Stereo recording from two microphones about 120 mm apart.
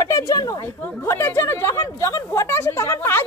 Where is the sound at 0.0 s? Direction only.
30° left (ahead or behind).